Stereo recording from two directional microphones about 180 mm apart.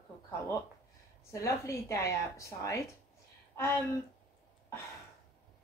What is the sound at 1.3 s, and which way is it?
A woman's voice, 15° left (ahead or behind).